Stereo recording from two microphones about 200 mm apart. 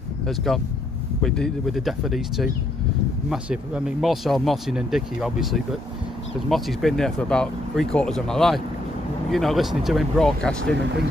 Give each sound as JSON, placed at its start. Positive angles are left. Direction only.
{"t": 0.3, "sound": "speech", "side_deg": 0}